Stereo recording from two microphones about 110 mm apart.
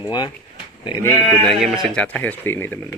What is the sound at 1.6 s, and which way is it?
Speech, 5° right (ahead or behind).